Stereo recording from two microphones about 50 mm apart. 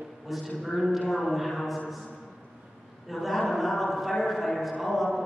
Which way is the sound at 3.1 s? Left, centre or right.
Centre.